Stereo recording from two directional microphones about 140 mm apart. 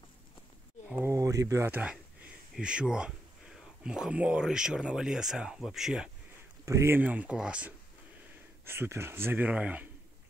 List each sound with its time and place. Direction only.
0.8 s a sound: 10° right (ahead or behind)
1.1 s a man's voice: 25° right (ahead or behind); by 6.0 s 5° right (ahead or behind)
6.6 s speech: 20° right (ahead or behind)
8.6 s speech: 15° right (ahead or behind)